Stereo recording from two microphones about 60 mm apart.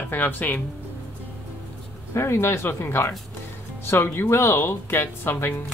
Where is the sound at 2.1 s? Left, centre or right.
Left.